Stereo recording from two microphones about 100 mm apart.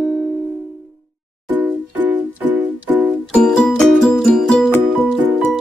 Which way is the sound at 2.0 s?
15° right (ahead or behind).